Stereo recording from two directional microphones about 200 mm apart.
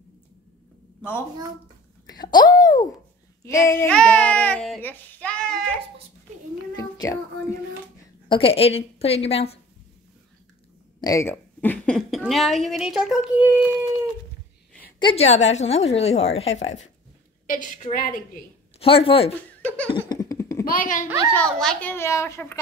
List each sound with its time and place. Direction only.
2.3 s a child's voice: 20° left (ahead or behind); by 5.7 s 5° left (ahead or behind)
6.8 s child singing: 15° left (ahead or behind)
8.3 s a woman's voice: 30° left (ahead or behind)
11.0 s a woman's voice: 15° left (ahead or behind); by 13.7 s centre (ahead or behind)
15.0 s a woman's voice: 25° left (ahead or behind); by 18.2 s 45° left (ahead or behind)
18.8 s a woman's voice: 30° left (ahead or behind)
19.9 s laughter: 20° left (ahead or behind)
20.6 s a woman's voice: 40° left (ahead or behind)
21.4 s a child's voice: 5° left (ahead or behind)